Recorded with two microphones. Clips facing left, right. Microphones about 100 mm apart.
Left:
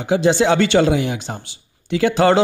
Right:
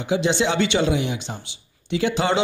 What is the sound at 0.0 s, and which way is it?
Speech, 45° left (ahead or behind).